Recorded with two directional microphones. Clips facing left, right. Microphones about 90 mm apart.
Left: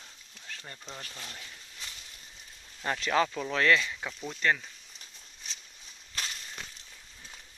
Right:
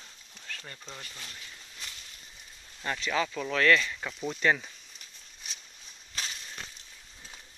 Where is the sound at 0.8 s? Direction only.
15° left (ahead or behind).